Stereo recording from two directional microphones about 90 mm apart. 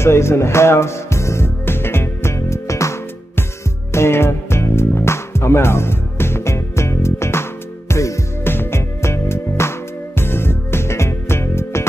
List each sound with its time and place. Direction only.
0.0 s music: 30° left (ahead or behind)